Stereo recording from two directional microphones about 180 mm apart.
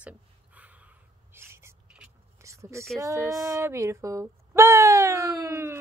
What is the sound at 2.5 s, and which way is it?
Speech, 15° right (ahead or behind).